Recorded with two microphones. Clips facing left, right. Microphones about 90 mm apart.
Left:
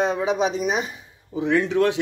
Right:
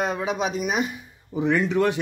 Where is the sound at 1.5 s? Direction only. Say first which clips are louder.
Left 2 dB; 15° right (ahead or behind).